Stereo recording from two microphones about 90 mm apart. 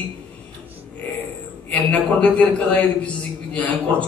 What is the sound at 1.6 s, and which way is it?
A man's voice, 15° left (ahead or behind).